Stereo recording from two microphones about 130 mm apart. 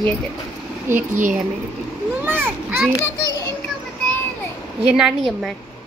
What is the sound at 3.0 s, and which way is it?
Children playing, 25° left (ahead or behind).